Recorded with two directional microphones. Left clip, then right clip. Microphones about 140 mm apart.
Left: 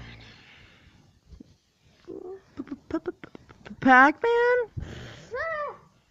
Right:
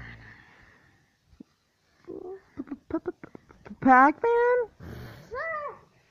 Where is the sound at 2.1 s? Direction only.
Centre (ahead or behind).